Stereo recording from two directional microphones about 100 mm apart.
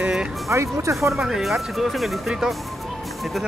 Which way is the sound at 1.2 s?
5° right (ahead or behind).